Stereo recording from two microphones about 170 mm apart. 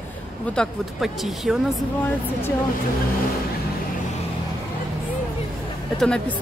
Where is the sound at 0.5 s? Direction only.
Centre (ahead or behind).